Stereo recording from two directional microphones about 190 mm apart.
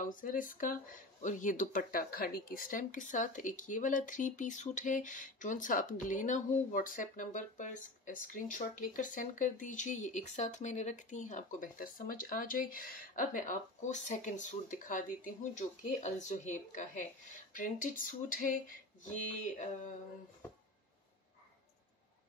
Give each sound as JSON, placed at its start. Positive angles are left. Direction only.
{"t": 0.0, "sound": "speech", "side_deg": 45}